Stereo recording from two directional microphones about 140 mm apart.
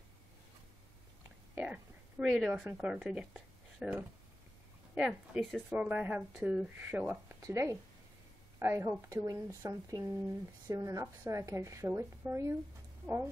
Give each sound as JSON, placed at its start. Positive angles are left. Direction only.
{"t": 1.5, "sound": "whispering", "side_deg": -10}
{"t": 2.2, "sound": "a woman's voice", "side_deg": 0}